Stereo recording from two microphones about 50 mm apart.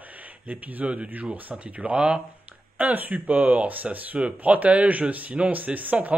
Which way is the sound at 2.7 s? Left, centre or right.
Right.